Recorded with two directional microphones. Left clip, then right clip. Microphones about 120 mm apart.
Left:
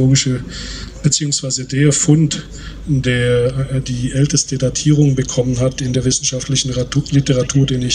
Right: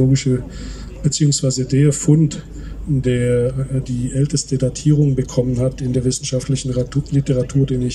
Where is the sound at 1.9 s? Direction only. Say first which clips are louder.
Left 3 dB; 15° right (ahead or behind).